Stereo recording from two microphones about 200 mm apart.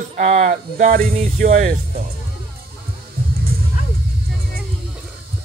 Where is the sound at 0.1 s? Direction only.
35° right (ahead or behind).